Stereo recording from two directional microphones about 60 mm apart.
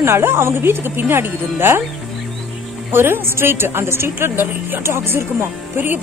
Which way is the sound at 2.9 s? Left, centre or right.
Right.